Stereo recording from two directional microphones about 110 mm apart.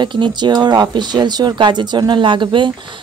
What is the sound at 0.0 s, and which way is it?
A woman's voice, 45° right (ahead or behind).